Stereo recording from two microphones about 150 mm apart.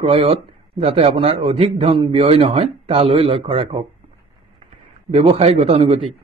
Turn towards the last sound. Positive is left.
turn(degrees=-45)  # may be behind; listen again after turning